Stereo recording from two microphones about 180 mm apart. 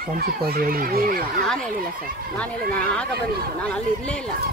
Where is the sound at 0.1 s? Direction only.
60° right (ahead or behind).